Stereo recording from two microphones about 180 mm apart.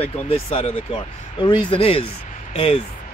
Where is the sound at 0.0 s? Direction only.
35° left (ahead or behind).